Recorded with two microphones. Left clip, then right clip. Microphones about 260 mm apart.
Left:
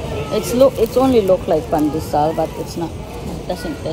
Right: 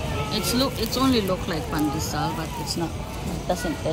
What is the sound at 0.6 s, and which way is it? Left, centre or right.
Speech, centre.